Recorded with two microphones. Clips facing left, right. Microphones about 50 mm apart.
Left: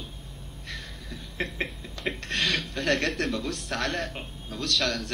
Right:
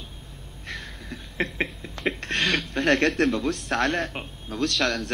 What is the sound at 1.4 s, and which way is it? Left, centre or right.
A man's voice, right.